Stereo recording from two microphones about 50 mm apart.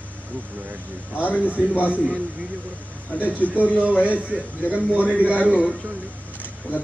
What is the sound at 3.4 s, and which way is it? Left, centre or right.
Speech, left.